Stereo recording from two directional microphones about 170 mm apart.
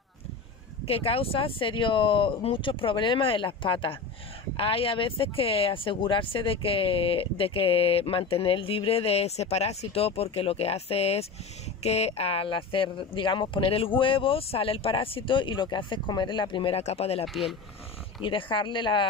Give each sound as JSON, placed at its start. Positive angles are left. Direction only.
{"t": 0.8, "sound": "speech", "side_deg": 35}
{"t": 17.3, "sound": "speech", "side_deg": 0}
{"t": 18.2, "sound": "speech", "side_deg": 30}